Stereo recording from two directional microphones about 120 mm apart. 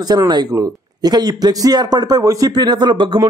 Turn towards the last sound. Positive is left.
turn(degrees=-45)  # may be behind; listen again after turning